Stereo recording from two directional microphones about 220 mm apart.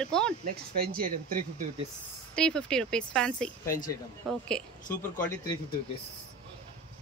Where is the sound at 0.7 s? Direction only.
40° right (ahead or behind).